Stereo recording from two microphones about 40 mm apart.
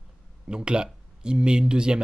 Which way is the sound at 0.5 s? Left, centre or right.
Right.